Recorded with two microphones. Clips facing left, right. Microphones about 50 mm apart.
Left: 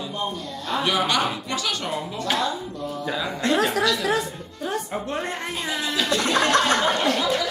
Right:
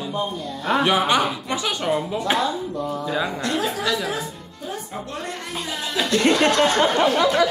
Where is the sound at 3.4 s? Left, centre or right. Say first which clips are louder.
Left 7 dB; left.